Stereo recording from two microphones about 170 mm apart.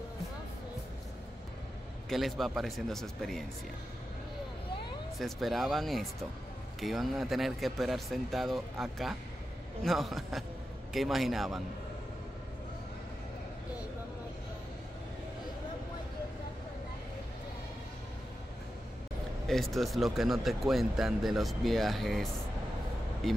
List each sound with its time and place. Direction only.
2.0 s speech: centre (ahead or behind)
5.2 s speech: centre (ahead or behind)
19.4 s speech: centre (ahead or behind)